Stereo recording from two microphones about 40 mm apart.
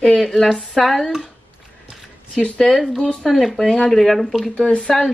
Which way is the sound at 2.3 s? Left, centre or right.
Left.